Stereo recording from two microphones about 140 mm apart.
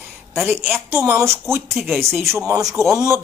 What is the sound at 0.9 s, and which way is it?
Speech, 20° right (ahead or behind).